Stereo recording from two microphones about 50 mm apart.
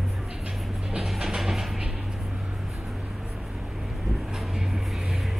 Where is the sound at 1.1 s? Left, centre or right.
Centre.